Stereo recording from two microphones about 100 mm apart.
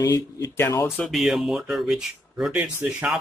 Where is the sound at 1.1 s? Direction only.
Centre (ahead or behind).